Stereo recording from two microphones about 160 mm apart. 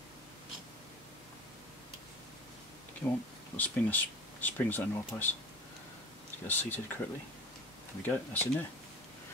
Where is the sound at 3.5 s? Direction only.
10° left (ahead or behind).